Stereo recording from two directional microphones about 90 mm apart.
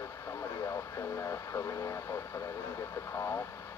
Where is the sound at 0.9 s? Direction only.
30° left (ahead or behind).